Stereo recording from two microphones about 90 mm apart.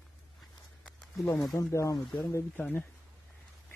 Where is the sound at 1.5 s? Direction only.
35° left (ahead or behind).